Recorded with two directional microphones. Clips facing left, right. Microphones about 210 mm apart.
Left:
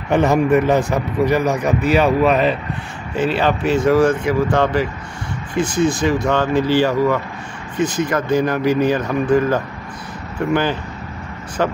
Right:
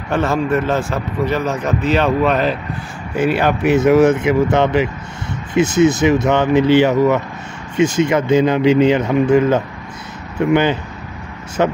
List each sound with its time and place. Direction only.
0.1 s speech: 15° left (ahead or behind)
3.2 s speech: 10° right (ahead or behind)